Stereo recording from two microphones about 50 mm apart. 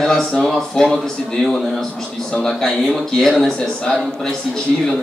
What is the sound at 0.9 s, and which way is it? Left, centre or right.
A man's voice, centre.